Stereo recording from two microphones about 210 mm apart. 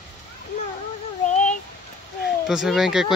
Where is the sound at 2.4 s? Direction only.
Centre (ahead or behind).